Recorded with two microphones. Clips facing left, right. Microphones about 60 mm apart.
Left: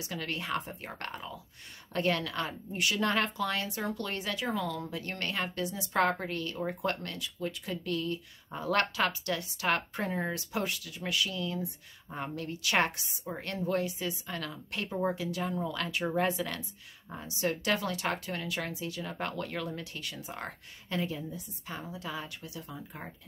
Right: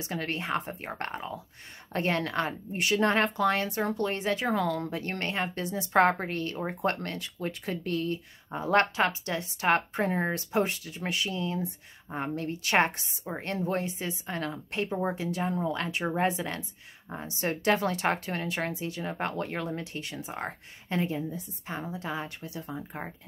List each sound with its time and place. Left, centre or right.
0.0 s speech: right